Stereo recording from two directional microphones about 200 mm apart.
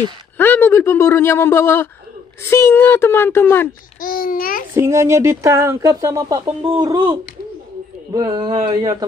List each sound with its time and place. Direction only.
0.4 s a man's voice: 10° left (ahead or behind)
4.0 s a child's voice: 45° left (ahead or behind)
4.7 s speech: 15° right (ahead or behind)